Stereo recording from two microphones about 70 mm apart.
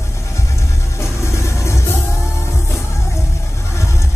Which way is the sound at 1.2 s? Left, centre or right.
Left.